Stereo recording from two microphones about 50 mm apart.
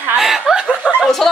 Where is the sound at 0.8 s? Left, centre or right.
Left.